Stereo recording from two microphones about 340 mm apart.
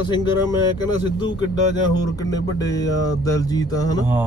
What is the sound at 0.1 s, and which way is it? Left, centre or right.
Speech, centre.